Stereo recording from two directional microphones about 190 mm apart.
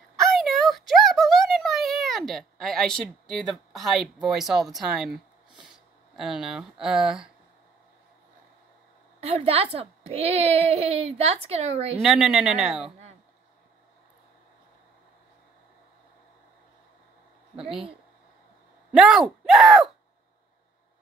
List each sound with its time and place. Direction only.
0.1 s a sound: centre (ahead or behind)
2.6 s speech: centre (ahead or behind)
9.2 s a woman's voice: 35° right (ahead or behind)
12.0 s speech: centre (ahead or behind)
17.6 s speech: 5° right (ahead or behind)
18.9 s speech: centre (ahead or behind)